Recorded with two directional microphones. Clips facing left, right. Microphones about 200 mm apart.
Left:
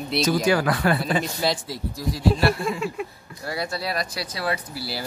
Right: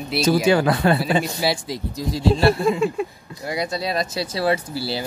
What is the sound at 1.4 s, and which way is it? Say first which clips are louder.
Speech: right 2 dB; 15° right (ahead or behind).